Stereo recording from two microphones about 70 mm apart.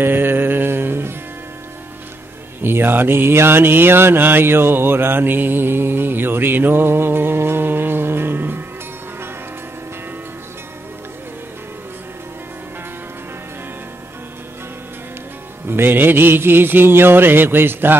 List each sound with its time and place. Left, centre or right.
0.0 s a sound: right
2.6 s mantra: right
15.6 s mantra: right